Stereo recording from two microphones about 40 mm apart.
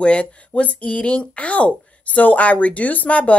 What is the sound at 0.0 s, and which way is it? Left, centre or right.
Speech, left.